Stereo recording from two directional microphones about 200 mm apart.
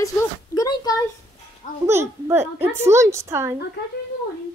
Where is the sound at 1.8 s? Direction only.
15° right (ahead or behind).